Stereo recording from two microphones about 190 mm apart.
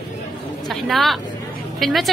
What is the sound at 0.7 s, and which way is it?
Vehicle, centre (ahead or behind).